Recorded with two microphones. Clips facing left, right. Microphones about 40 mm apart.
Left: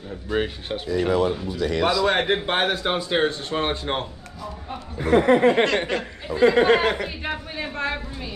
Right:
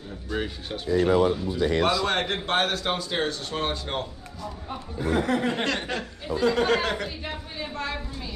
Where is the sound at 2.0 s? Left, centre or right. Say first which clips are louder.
Left 5 dB; centre.